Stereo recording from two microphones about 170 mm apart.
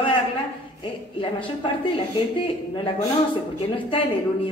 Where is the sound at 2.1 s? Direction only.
30° left (ahead or behind).